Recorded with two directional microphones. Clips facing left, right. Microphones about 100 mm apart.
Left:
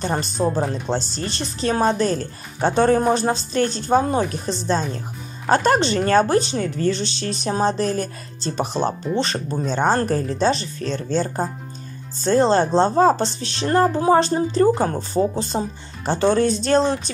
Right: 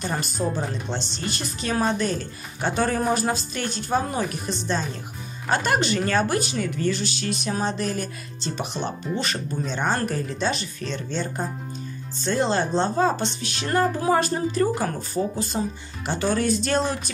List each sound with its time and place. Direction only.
0.0 s a woman's voice: 30° left (ahead or behind)